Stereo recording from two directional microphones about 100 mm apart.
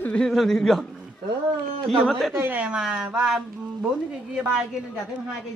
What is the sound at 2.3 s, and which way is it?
Speech, 20° right (ahead or behind).